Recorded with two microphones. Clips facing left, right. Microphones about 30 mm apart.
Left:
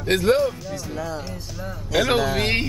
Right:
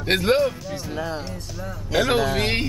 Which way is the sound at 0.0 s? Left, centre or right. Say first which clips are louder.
Left 1 dB; right.